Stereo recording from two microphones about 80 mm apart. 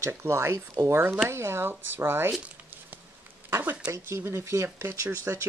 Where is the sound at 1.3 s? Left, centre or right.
Right.